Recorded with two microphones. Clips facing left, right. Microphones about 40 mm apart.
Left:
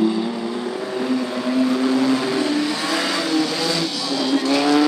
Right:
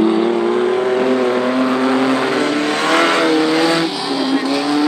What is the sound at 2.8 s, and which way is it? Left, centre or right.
Vehicle, right.